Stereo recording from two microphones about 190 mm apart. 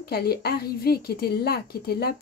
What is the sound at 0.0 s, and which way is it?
A woman's voice, 55° left (ahead or behind).